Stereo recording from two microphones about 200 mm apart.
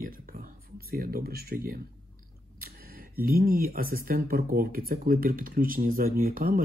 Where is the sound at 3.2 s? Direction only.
50° right (ahead or behind).